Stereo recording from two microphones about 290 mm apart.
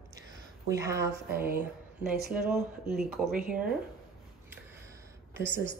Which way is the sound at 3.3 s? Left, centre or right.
Right.